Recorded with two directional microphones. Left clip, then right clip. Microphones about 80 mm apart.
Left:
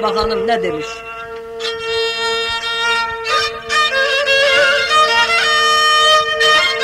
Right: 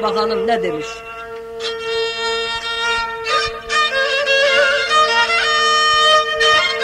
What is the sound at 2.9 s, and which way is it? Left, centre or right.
Music, left.